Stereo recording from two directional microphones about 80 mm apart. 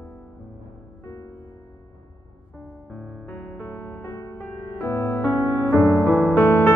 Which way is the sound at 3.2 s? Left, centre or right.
Left.